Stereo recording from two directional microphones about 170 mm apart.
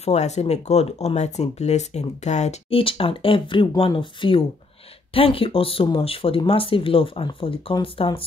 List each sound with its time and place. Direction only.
0.0 s speech: 40° left (ahead or behind)